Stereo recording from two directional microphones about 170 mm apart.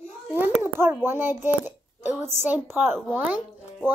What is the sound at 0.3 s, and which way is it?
A child's voice, 10° right (ahead or behind).